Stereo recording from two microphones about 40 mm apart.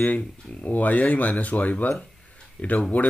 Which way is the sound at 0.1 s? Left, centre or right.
Left.